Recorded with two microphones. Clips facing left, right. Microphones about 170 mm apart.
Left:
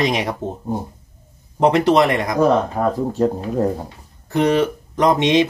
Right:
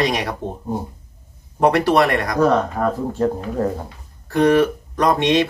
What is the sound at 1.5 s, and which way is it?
Speech, 20° left (ahead or behind).